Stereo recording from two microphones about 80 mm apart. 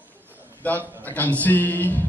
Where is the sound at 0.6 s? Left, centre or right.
Left.